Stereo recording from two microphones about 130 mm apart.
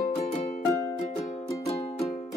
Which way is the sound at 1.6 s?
45° left (ahead or behind).